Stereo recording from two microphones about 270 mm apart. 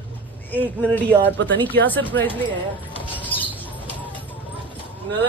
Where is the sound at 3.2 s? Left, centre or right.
Centre.